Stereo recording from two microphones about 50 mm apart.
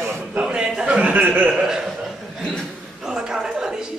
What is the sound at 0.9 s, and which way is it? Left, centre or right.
Speech, right.